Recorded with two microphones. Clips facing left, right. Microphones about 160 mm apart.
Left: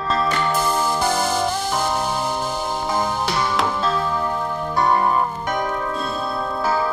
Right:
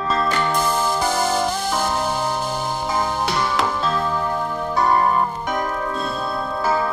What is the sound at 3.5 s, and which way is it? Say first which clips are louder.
Music: even; centre (ahead or behind).